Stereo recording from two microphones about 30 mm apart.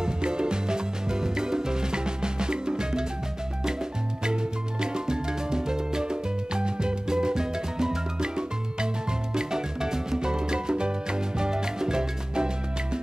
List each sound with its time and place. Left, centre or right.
0.0 s music: right
4.2 s music: right